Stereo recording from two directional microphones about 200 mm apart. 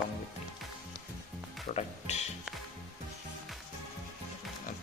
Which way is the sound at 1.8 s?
35° left (ahead or behind).